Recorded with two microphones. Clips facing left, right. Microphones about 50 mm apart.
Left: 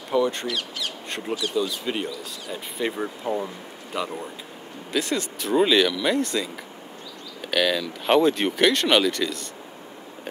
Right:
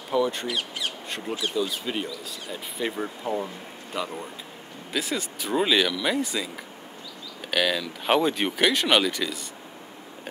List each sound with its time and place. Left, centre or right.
0.1 s speech: centre
0.5 s speech: right
1.5 s speech: centre